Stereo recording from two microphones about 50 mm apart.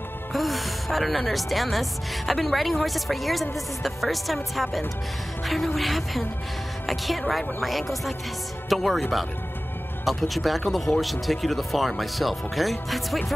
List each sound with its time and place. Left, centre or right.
0.3 s a woman's voice: centre
10.0 s a woman's voice: centre